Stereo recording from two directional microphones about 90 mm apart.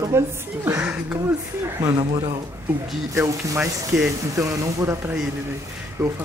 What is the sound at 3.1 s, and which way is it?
Speech, 30° right (ahead or behind).